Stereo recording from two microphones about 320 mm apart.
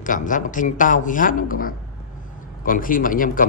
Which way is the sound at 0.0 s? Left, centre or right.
Left.